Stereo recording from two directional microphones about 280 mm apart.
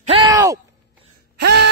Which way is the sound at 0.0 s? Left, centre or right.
Centre.